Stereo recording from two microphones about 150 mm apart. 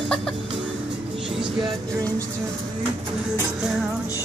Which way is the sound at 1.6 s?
25° right (ahead or behind).